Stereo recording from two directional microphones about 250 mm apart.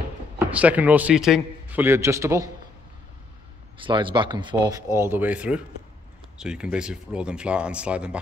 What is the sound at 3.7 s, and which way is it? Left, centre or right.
Speech, centre.